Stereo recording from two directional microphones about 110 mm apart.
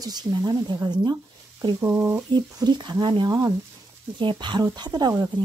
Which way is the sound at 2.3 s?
40° right (ahead or behind).